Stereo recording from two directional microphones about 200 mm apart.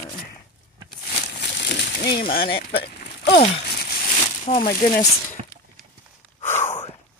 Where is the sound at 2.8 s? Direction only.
55° left (ahead or behind).